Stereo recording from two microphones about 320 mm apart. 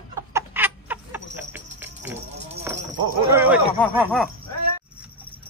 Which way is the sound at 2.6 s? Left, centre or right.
Centre.